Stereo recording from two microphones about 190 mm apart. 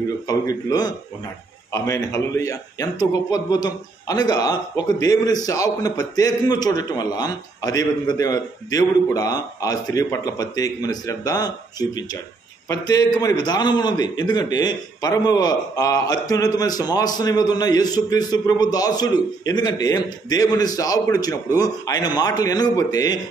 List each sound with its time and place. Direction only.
0.3 s a man's voice: 20° left (ahead or behind)